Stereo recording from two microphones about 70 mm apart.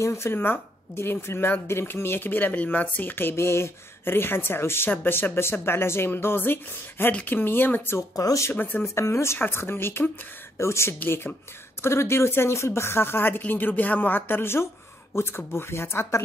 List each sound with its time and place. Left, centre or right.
0.0 s speech: left
8.2 s speech: left
8.5 s speech: left
8.8 s speech: left
11.0 s speech: left
11.8 s speech: left